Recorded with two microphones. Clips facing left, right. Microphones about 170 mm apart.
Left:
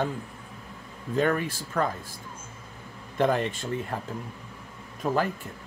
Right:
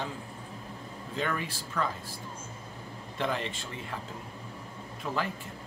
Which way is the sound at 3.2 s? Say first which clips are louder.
Left 8 dB; 50° left (ahead or behind).